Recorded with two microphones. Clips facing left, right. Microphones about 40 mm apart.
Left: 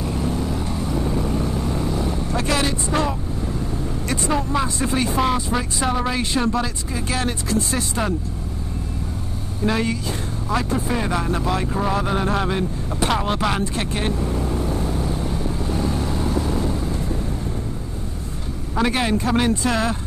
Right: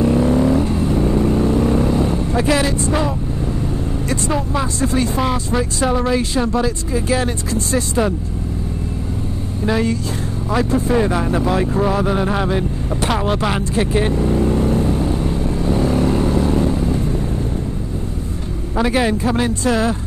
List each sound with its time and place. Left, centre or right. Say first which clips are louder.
0.0 s vehicle: right 10 dB; right
2.3 s vehicle: right 4 dB; centre
4.1 s speech: right 1 dB; centre
5.1 s speech: right 2 dB; centre
9.7 s speech: right 3 dB; centre
14.2 s speech: right 7 dB; right
15.7 s vehicle: right 9 dB; right
18.8 s speech: right 3 dB; centre